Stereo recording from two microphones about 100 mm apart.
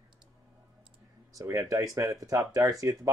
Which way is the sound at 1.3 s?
35° right (ahead or behind).